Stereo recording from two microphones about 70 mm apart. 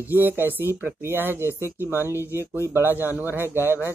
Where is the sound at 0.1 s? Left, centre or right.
Right.